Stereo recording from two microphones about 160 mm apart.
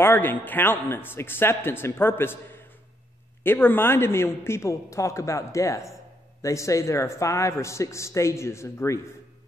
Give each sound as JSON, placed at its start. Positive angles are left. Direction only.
{"t": 0.0, "sound": "a man's voice", "side_deg": 15}